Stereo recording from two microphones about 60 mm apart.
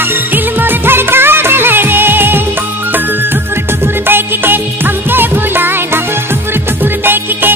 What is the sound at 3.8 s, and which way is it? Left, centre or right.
Music, right.